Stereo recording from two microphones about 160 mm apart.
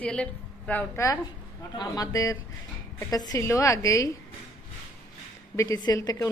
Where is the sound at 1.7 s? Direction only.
25° left (ahead or behind).